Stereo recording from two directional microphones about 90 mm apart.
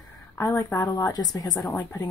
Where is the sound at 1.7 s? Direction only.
25° left (ahead or behind).